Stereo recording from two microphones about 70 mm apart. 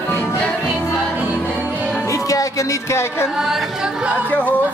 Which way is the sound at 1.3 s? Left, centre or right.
Left.